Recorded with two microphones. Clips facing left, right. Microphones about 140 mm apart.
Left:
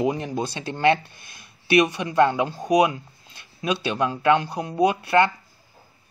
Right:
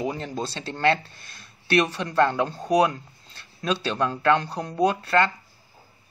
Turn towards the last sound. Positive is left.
turn(degrees=15)  # may be behind; listen again after turning